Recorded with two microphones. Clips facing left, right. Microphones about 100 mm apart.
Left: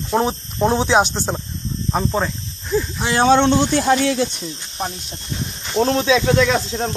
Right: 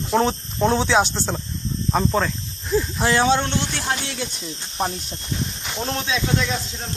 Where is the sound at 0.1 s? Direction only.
15° left (ahead or behind).